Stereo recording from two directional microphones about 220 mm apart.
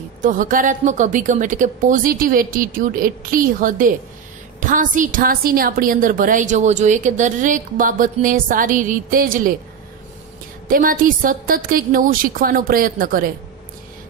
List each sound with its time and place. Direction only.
0.2 s a woman's voice: 35° right (ahead or behind)
10.7 s a woman's voice: 40° right (ahead or behind)